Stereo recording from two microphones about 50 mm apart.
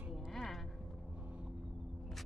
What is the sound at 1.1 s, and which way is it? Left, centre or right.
Music, right.